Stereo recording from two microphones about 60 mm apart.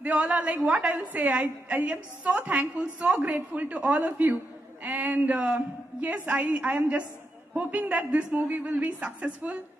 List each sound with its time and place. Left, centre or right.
0.0 s a woman's voice: right